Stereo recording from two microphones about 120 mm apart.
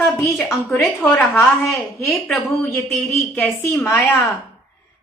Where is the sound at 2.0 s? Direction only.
Centre (ahead or behind).